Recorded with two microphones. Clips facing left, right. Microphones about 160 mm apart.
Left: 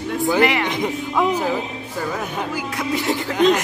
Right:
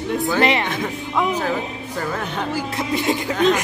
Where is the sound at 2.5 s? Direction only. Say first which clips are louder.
Right 2 dB; 25° right (ahead or behind).